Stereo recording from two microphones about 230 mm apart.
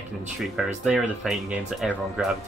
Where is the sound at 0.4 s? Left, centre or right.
Centre.